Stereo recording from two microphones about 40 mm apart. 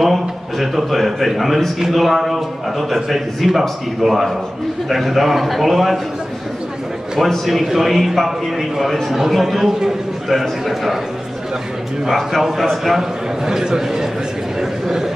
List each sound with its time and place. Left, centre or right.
0.0 s a man's voice: centre
7.2 s a man's voice: centre
12.1 s a man's voice: centre
13.5 s a man's voice: centre
14.6 s a sound: centre